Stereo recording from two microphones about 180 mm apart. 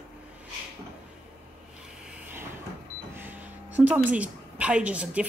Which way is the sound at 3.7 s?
10° right (ahead or behind).